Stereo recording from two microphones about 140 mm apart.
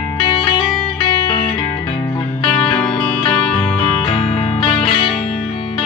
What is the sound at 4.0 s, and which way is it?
Music, 35° left (ahead or behind).